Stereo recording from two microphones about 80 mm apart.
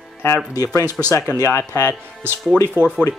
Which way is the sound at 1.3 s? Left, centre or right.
Left.